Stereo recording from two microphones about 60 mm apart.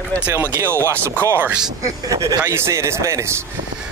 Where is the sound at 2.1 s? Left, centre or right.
Right.